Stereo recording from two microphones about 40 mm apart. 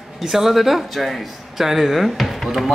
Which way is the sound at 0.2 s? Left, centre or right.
Centre.